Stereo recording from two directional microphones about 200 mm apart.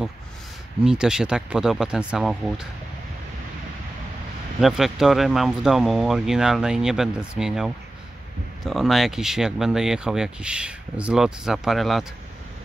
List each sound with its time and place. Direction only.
0.8 s speech: 5° right (ahead or behind)
4.6 s speech: centre (ahead or behind)